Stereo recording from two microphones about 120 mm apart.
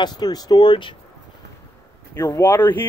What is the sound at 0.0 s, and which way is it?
Speech, 35° left (ahead or behind).